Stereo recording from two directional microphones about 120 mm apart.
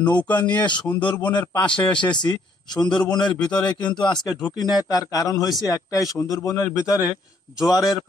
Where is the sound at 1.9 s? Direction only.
40° left (ahead or behind).